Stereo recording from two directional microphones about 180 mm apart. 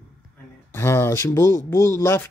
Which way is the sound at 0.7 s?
15° left (ahead or behind).